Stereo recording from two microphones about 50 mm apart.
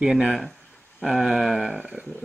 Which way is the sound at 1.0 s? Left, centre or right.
Centre.